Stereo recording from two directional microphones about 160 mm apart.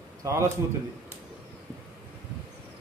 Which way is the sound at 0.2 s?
20° right (ahead or behind).